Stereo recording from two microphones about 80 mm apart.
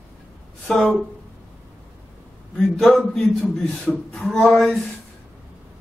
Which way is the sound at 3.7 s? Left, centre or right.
Centre.